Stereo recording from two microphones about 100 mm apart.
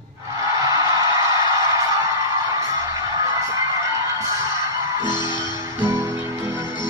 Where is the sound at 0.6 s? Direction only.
35° right (ahead or behind).